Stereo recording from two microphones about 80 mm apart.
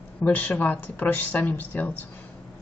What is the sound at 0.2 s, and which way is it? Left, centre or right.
Speech, left.